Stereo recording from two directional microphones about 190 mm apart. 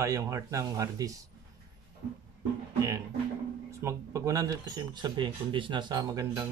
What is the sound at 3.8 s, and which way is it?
Speech, 15° right (ahead or behind).